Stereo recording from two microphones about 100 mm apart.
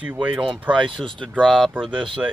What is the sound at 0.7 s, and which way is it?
Speech, 55° right (ahead or behind).